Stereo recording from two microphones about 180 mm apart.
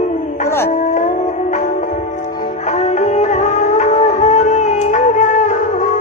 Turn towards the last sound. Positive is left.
turn(degrees=45)  # may be behind; listen again after turning